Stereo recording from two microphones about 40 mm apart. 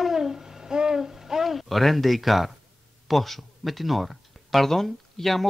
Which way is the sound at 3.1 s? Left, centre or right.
Centre.